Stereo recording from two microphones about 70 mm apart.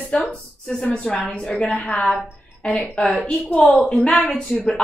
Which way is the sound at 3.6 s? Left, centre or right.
Centre.